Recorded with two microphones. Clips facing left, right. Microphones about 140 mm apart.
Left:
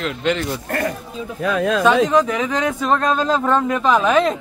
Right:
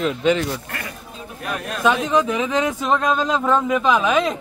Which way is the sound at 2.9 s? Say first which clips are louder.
Left 2 dB; 5° right (ahead or behind).